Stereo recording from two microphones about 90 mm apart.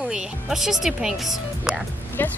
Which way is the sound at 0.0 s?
5° right (ahead or behind).